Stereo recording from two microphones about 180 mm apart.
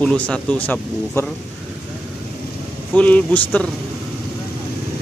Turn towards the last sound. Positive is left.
turn(degrees=10)  # may be behind; listen again after turning